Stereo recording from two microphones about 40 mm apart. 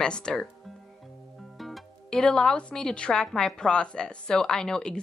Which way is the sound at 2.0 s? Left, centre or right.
Centre.